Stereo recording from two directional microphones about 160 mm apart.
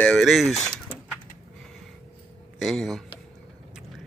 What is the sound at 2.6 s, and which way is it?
Speech, centre (ahead or behind).